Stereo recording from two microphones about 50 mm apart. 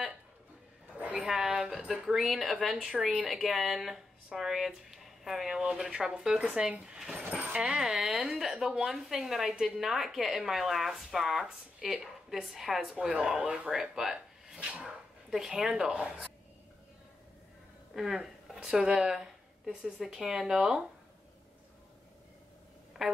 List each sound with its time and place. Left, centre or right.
0.9 s a sound: right
1.2 s speech: centre
7.3 s dog: right
7.6 s speech: centre
8.0 s a sound: centre
8.4 s speech: centre
17.9 s speech: centre